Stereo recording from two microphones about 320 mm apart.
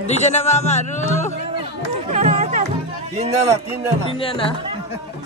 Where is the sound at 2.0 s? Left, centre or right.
Right.